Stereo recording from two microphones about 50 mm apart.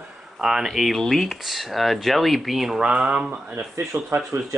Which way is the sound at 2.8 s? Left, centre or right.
Right.